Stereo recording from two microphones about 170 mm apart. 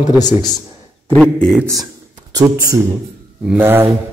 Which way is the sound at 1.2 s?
Centre (ahead or behind).